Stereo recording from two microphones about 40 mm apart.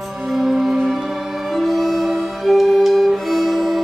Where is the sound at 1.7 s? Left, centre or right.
Centre.